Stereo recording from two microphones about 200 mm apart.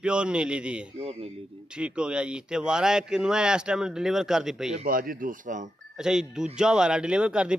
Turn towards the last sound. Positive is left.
turn(degrees=-5)  # may be behind; listen again after turning